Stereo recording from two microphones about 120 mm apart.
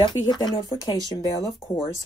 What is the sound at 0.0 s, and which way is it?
Speech, 40° left (ahead or behind).